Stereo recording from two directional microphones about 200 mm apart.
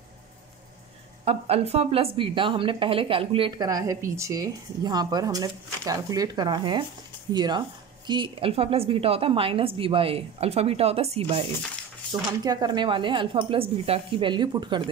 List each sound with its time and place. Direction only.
1.2 s a woman's voice: 30° right (ahead or behind)